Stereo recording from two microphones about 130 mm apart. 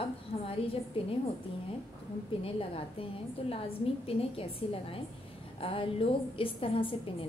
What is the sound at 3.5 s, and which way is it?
A woman's voice, 45° left (ahead or behind).